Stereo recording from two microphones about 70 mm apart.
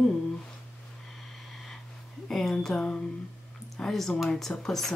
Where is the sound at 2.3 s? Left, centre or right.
Centre.